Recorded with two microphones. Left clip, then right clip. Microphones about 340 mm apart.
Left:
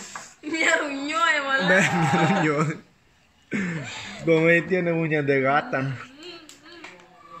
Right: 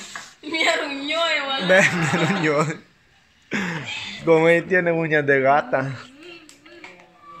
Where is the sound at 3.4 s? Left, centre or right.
Centre.